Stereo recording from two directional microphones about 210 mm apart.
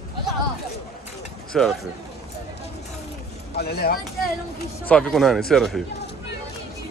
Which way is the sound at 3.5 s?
50° left (ahead or behind).